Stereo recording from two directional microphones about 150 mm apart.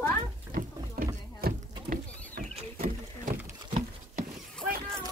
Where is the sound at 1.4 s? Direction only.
90° right.